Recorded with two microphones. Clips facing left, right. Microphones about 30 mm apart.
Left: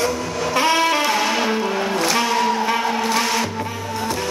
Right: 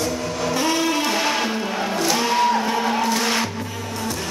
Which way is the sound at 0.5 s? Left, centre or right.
Left.